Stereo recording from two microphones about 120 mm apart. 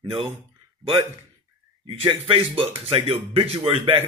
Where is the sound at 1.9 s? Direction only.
50° right (ahead or behind).